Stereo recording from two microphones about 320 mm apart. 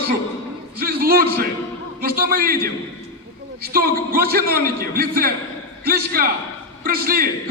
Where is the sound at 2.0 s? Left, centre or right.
Right.